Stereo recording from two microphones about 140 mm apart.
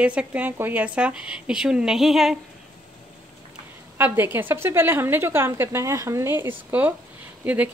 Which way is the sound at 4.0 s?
15° right (ahead or behind).